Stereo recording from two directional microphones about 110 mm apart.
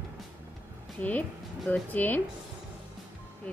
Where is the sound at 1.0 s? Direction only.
15° left (ahead or behind).